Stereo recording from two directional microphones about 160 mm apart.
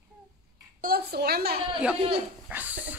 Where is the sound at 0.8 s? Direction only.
75° right (ahead or behind).